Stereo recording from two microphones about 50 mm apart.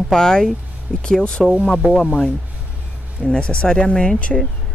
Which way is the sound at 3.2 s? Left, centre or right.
Centre.